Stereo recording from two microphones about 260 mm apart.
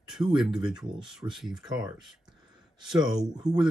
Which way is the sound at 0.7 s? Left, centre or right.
Centre.